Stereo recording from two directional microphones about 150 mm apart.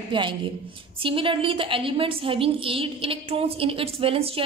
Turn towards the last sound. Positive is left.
turn(degrees=-40)  # may be behind; listen again after turning